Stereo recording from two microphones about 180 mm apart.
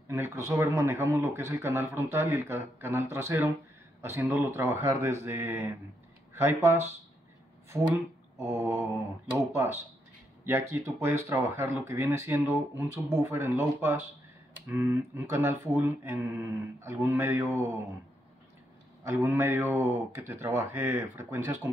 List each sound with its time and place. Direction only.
0.1 s speech: 15° right (ahead or behind)
8.5 s speech: 15° right (ahead or behind)
19.0 s speech: 15° right (ahead or behind)